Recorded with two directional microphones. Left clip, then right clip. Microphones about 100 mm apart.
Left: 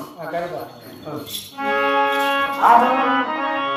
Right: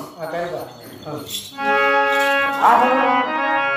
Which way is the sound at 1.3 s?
20° left (ahead or behind).